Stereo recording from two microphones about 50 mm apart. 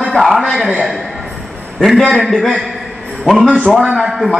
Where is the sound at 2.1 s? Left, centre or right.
Centre.